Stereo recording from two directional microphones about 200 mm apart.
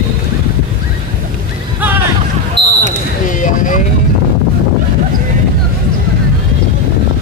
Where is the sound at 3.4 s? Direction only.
40° left (ahead or behind).